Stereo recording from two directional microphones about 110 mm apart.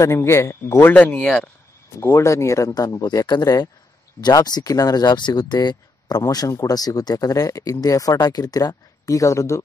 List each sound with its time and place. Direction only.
0.0 s speech: 25° left (ahead or behind); by 1.5 s 10° left (ahead or behind)
2.0 s speech: 25° left (ahead or behind)